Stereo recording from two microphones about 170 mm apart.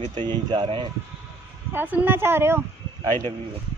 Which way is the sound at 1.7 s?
10° right (ahead or behind).